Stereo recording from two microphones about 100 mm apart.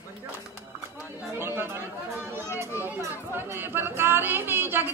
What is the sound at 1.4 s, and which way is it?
Chatter, 25° right (ahead or behind).